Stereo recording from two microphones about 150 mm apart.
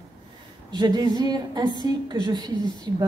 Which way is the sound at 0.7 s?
25° right (ahead or behind).